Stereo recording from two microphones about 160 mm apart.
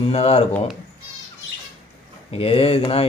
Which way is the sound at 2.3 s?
35° left (ahead or behind).